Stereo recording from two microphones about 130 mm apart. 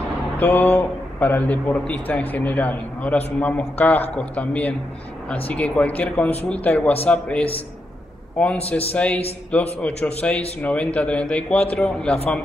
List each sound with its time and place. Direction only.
0.4 s a man's voice: 15° left (ahead or behind)
8.9 s a man's voice: 10° left (ahead or behind)